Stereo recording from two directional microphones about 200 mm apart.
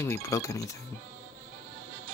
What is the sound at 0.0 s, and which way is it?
Speech, 15° left (ahead or behind).